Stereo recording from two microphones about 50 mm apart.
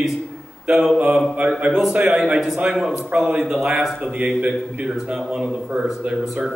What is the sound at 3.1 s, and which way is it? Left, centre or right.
Speech, right.